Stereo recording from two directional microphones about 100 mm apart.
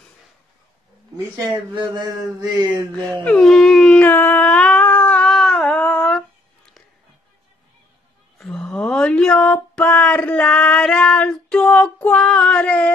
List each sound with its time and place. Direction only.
1.7 s mantra: 45° right (ahead or behind)
3.3 s dog: 5° left (ahead or behind)
5.3 s humming: 5° left (ahead or behind)
8.4 s a sound: 5° left (ahead or behind)